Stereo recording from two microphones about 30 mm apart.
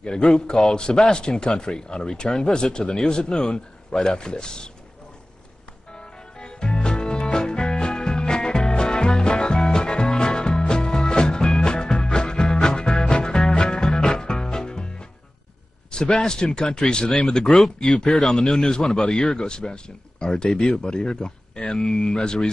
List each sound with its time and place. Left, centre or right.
0.0 s speech: left
5.9 s music: left
15.9 s speech: left